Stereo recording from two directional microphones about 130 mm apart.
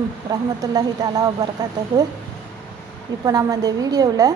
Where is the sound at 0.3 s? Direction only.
30° right (ahead or behind).